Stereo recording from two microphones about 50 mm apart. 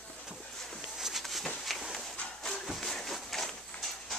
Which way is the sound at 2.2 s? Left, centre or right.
Centre.